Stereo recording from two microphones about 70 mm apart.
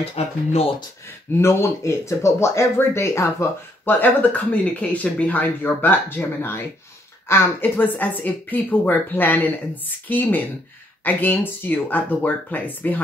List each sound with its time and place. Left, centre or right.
1.4 s speech: left
3.8 s speech: left